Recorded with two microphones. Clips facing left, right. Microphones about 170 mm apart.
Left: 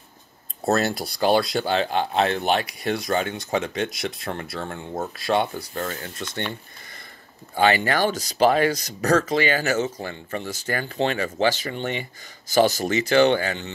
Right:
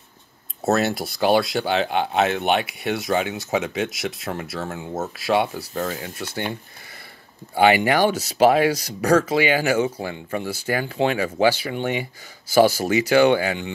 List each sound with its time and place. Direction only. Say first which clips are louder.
0.7 s speech: right 1 dB; centre (ahead or behind)
7.5 s speech: right 3 dB; 15° right (ahead or behind)